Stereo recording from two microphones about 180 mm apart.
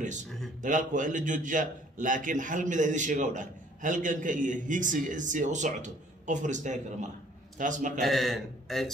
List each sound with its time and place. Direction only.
0.6 s a man's voice: 45° right (ahead or behind)
8.0 s a man's voice: centre (ahead or behind)